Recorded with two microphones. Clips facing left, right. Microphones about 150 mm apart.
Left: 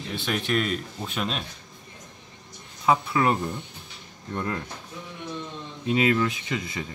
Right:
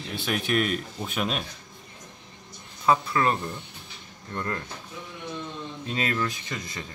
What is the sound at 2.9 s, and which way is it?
Speech, 10° left (ahead or behind).